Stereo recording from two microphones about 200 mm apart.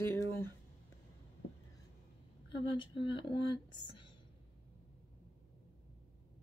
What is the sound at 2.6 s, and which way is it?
Speech, 25° left (ahead or behind).